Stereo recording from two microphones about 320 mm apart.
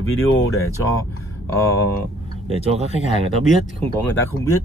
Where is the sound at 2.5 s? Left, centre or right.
Centre.